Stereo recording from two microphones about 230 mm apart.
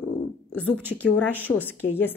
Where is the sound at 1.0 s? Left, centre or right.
Centre.